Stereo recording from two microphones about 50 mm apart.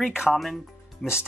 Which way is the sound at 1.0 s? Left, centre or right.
Centre.